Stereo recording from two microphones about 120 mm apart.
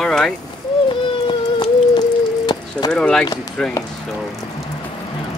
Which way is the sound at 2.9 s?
5° left (ahead or behind).